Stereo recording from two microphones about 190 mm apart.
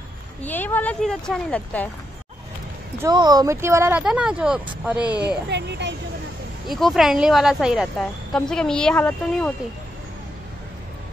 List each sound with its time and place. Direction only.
0.4 s speech: 10° left (ahead or behind)
3.0 s a woman's voice: 20° right (ahead or behind); by 5.0 s 5° right (ahead or behind)
5.2 s speech: 65° right (ahead or behind)
6.7 s a woman's voice: centre (ahead or behind)